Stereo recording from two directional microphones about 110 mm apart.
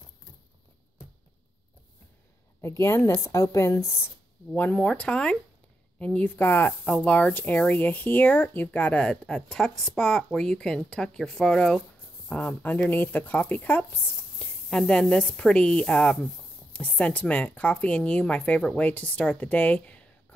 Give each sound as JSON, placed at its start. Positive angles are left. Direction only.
{"t": 2.6, "sound": "speech", "side_deg": 25}
{"t": 4.6, "sound": "speech", "side_deg": 10}